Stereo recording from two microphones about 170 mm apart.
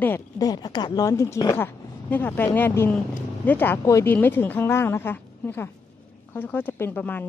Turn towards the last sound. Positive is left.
turn(degrees=10)  # may be behind; listen again after turning